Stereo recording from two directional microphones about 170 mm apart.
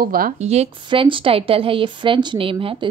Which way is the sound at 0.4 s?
40° right (ahead or behind).